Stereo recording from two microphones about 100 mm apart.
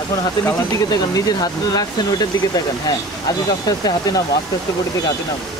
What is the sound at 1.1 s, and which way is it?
Speech, 40° left (ahead or behind).